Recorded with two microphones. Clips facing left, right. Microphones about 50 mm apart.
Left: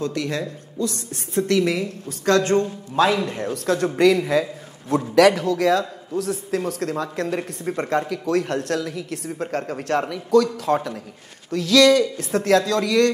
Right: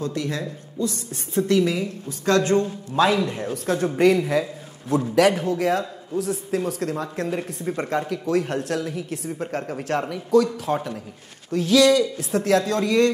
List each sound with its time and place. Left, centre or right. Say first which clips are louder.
0.0 s a woman's voice: left 2 dB; left
3.5 s a woman's voice: left 2 dB; left
5.1 s a woman's voice: left 4 dB; left